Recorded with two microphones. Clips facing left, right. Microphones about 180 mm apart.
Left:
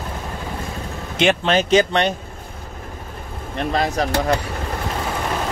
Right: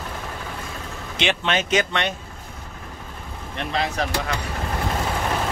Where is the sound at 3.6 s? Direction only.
45° left (ahead or behind).